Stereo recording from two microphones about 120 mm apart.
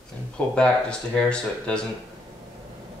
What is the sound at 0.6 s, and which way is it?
Speech, 10° left (ahead or behind).